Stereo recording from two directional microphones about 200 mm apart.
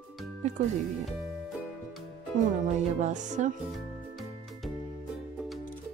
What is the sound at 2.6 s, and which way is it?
Speech, 35° right (ahead or behind).